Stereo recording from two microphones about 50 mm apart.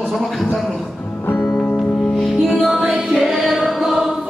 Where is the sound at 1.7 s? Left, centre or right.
Left.